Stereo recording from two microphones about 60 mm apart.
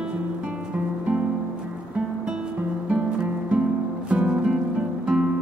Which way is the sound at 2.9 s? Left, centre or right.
Right.